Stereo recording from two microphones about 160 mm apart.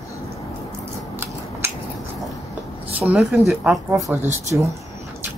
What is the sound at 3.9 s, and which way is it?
Speech, 15° right (ahead or behind).